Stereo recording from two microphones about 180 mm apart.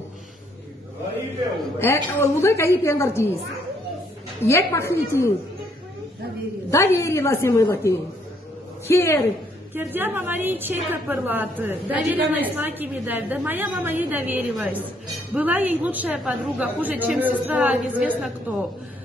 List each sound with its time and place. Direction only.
1.8 s a woman's voice: 15° left (ahead or behind)
4.5 s a woman's voice: 15° left (ahead or behind)
6.7 s a woman's voice: 15° left (ahead or behind)
9.8 s a woman's voice: 10° right (ahead or behind)